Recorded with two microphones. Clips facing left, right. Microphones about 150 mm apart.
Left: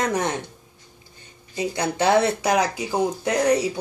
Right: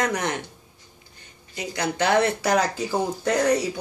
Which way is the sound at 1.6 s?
25° left (ahead or behind).